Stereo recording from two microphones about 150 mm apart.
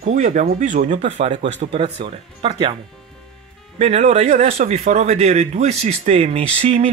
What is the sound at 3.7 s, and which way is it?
Speech, 50° right (ahead or behind).